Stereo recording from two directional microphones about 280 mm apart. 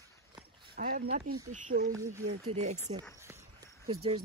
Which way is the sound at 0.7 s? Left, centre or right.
Right.